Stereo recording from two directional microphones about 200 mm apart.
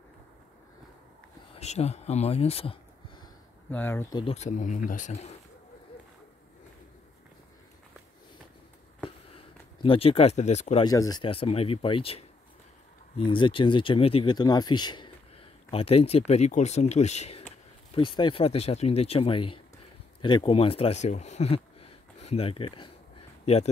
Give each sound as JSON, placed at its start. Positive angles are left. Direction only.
{"t": 1.5, "sound": "speech", "side_deg": 30}
{"t": 3.7, "sound": "speech", "side_deg": 10}
{"t": 4.2, "sound": "speech", "side_deg": 30}
{"t": 9.8, "sound": "speech", "side_deg": 25}
{"t": 10.8, "sound": "speech", "side_deg": 20}